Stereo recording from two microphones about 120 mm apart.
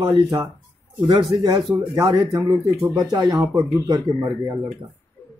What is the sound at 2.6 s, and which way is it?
Speech, 15° right (ahead or behind).